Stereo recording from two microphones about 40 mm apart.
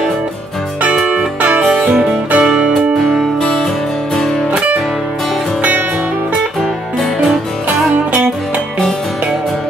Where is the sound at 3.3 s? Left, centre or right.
Centre.